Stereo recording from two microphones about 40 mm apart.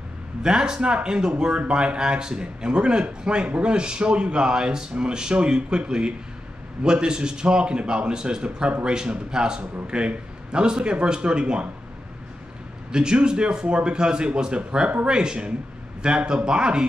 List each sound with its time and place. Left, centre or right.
0.4 s speech: centre
12.9 s speech: right